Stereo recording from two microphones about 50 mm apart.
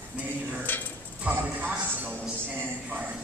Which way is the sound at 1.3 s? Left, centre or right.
Right.